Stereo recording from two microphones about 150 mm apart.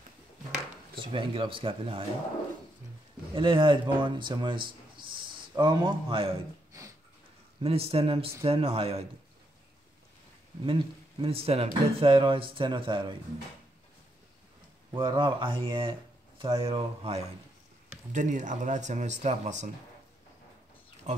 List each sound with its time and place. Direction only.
0.9 s speech: 35° right (ahead or behind)
3.3 s speech: 35° right (ahead or behind)
7.6 s speech: 40° right (ahead or behind)
10.6 s speech: 35° right (ahead or behind)
15.0 s speech: 30° right (ahead or behind)
18.1 s speech: 55° right (ahead or behind)